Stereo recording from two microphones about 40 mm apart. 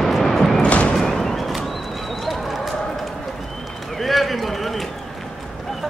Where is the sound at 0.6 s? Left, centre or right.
Left.